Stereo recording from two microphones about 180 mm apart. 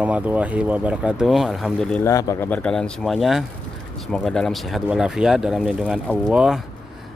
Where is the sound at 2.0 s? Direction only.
20° left (ahead or behind).